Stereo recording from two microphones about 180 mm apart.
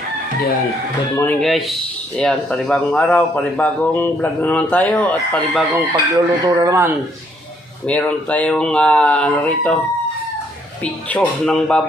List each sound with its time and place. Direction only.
1.1 s speech: 10° left (ahead or behind)
5.7 s speech: 20° right (ahead or behind)
7.8 s speech: 10° left (ahead or behind)
10.8 s speech: 5° left (ahead or behind)